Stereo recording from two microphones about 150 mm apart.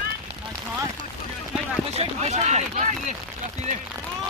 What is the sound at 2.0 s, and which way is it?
Speech, 45° right (ahead or behind).